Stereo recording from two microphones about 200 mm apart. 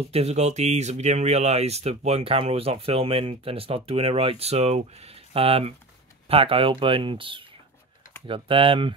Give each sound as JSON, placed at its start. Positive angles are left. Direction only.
{"t": 0.1, "sound": "speech", "side_deg": -30}